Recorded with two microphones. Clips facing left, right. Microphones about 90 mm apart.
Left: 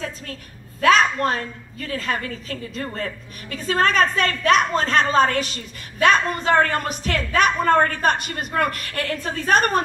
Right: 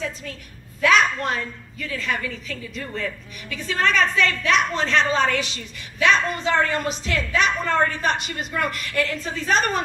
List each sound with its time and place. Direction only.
0.7 s a woman's voice: 40° left (ahead or behind)